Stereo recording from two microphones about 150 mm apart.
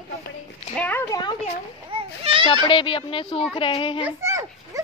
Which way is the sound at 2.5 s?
35° left (ahead or behind).